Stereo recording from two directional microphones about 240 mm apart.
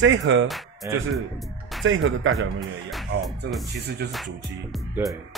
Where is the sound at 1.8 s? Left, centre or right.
Right.